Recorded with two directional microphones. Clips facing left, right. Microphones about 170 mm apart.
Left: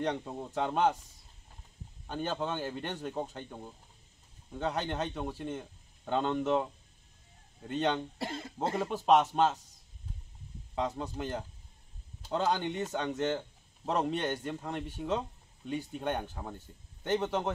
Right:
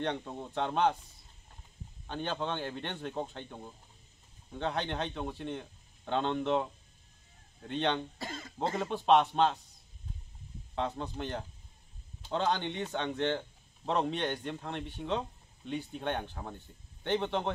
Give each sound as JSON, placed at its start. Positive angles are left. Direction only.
{"t": 0.0, "sound": "a man's voice", "side_deg": 5}
{"t": 2.0, "sound": "a man's voice", "side_deg": 5}
{"t": 8.3, "sound": "speech", "side_deg": 30}
{"t": 8.5, "sound": "a man's voice", "side_deg": 5}
{"t": 10.7, "sound": "a man's voice", "side_deg": 10}